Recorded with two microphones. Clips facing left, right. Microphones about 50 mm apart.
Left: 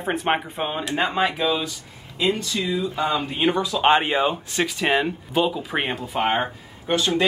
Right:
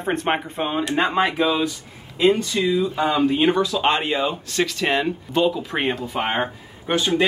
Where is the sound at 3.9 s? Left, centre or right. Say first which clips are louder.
Left 3 dB; left; by 6.5 s centre.